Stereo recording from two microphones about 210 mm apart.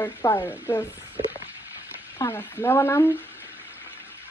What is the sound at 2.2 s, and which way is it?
Speech, 10° left (ahead or behind).